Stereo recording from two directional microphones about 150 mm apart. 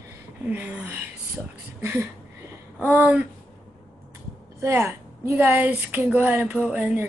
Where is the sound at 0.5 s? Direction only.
10° right (ahead or behind).